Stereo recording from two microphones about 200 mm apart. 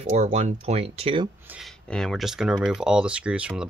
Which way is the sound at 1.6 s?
5° left (ahead or behind).